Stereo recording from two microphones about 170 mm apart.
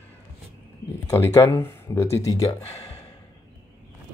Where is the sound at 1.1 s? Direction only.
15° left (ahead or behind).